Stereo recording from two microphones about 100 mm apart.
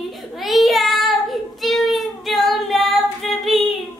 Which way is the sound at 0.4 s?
Centre (ahead or behind).